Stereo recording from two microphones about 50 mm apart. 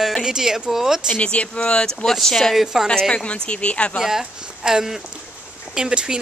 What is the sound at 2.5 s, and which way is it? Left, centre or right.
Speech, centre.